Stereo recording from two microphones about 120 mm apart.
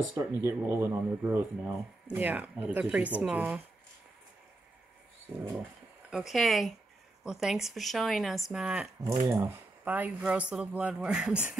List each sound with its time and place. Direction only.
0.1 s speech: 20° right (ahead or behind)
6.0 s speech: 5° right (ahead or behind)
9.0 s speech: 25° right (ahead or behind); by 11.5 s 10° right (ahead or behind)